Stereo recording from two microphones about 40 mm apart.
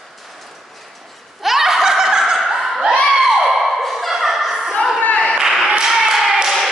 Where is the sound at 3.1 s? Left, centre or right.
Centre.